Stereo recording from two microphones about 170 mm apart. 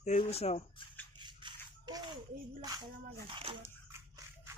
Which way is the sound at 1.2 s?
25° right (ahead or behind).